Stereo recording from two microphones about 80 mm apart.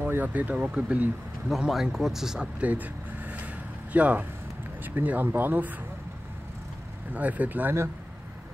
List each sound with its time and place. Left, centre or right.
0.0 s speech: right
1.5 s speech: centre
2.6 s vehicle: centre
3.9 s speech: centre
7.2 s speech: centre